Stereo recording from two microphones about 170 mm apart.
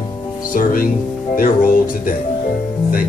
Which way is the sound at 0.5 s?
60° left (ahead or behind).